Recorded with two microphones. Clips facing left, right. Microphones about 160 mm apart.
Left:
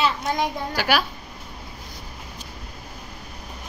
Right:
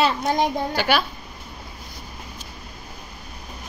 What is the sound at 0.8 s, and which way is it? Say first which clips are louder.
Speech: even; 10° left (ahead or behind).